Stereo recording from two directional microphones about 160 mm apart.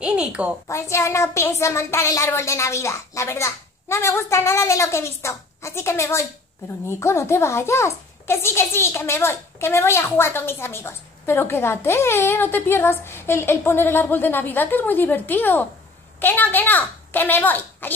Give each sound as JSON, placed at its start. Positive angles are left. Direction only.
{"t": 0.0, "sound": "a woman's voice", "side_deg": -5}
{"t": 0.7, "sound": "a child's voice", "side_deg": 20}